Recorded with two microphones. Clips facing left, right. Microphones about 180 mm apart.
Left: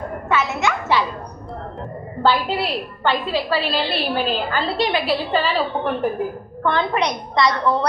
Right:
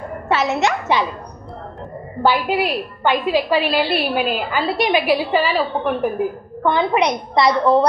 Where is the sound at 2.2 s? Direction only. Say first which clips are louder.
Right 2 dB; 15° right (ahead or behind).